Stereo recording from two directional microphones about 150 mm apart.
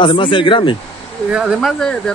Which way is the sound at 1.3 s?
5° right (ahead or behind).